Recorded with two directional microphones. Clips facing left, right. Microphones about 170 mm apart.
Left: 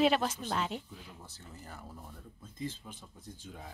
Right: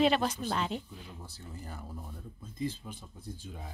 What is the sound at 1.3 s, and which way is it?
Speech, 10° right (ahead or behind).